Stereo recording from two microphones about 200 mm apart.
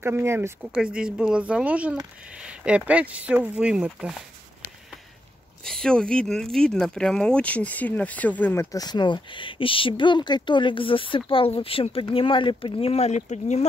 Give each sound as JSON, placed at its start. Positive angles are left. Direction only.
{"t": 0.0, "sound": "speech", "side_deg": -10}
{"t": 5.6, "sound": "speech", "side_deg": 5}